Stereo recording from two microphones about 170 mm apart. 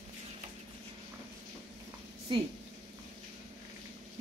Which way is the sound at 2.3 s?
30° right (ahead or behind).